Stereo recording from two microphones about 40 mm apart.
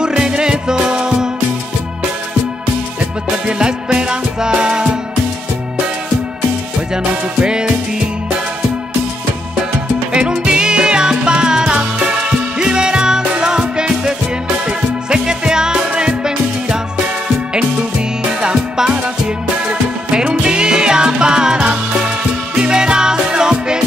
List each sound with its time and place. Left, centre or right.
0.0 s music: right
3.4 s music: right
7.0 s music: right
10.1 s music: right
18.4 s music: right